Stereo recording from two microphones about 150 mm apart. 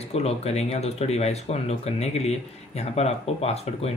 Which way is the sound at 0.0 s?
45° left (ahead or behind).